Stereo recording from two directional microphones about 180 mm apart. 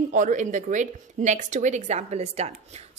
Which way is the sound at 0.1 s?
45° right (ahead or behind).